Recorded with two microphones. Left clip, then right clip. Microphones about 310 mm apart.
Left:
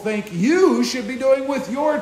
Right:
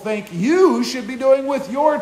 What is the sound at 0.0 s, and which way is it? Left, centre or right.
A man's voice, centre.